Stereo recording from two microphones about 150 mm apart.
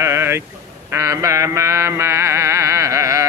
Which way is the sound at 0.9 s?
20° right (ahead or behind).